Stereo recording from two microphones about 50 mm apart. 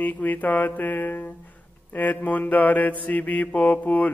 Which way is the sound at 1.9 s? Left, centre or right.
Left.